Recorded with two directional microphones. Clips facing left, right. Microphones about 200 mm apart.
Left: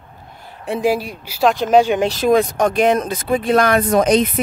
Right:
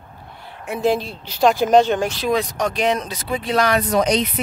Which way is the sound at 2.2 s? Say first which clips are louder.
Left 6 dB; 50° left (ahead or behind).